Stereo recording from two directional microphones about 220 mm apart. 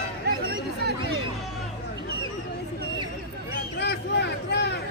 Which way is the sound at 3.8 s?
50° left (ahead or behind).